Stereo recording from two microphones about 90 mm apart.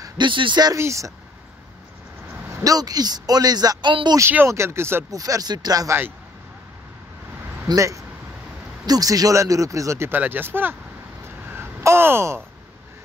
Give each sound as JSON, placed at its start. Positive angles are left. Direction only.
{"t": 0.2, "sound": "speech", "side_deg": -65}
{"t": 0.7, "sound": "speech", "side_deg": -35}
{"t": 2.6, "sound": "speech", "side_deg": -45}
{"t": 4.5, "sound": "speech", "side_deg": -30}
{"t": 5.1, "sound": "speech", "side_deg": -40}
{"t": 7.6, "sound": "speech", "side_deg": -40}
{"t": 11.5, "sound": "a sound", "side_deg": -25}